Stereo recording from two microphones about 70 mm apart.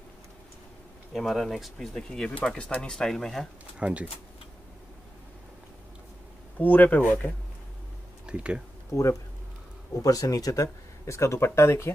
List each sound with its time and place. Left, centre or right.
1.1 s speech: centre
3.8 s speech: centre
6.6 s speech: left
8.3 s speech: centre
10.0 s speech: left
11.1 s speech: left